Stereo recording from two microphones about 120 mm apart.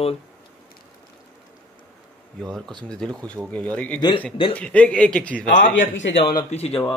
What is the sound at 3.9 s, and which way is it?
Speech, 35° left (ahead or behind).